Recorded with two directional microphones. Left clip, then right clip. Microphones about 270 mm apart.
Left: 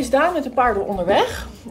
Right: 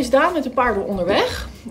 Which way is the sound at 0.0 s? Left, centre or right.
Centre.